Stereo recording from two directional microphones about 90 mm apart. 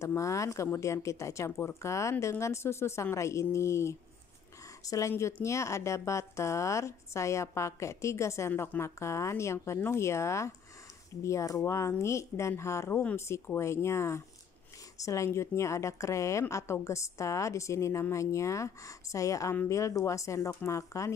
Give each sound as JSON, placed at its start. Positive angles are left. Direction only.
{"t": 0.0, "sound": "speech", "side_deg": 35}